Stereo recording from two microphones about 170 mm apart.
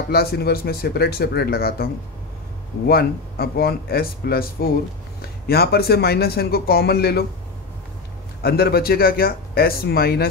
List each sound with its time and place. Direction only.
0.1 s speech: 65° left (ahead or behind)
2.9 s speech: 65° left (ahead or behind)
8.4 s speech: 65° left (ahead or behind)